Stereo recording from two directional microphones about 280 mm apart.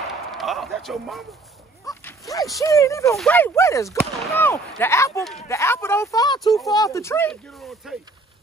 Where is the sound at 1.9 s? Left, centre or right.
Centre.